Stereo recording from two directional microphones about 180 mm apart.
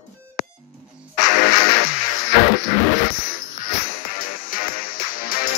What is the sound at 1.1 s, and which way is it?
Music, 45° left (ahead or behind).